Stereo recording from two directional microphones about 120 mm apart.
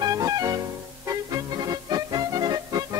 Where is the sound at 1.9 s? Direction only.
35° right (ahead or behind).